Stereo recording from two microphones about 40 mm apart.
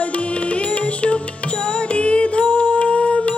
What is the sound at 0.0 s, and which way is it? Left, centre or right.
Music, left.